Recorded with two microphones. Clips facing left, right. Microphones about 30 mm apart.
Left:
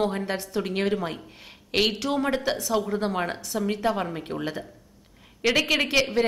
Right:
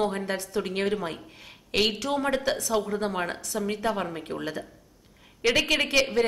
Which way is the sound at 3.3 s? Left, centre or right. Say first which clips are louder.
Left 2 dB; left.